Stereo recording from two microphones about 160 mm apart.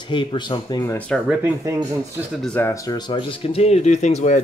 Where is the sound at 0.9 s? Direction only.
5° left (ahead or behind).